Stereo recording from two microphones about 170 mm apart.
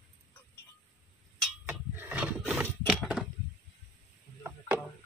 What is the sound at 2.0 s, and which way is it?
Mechanisms, 10° right (ahead or behind).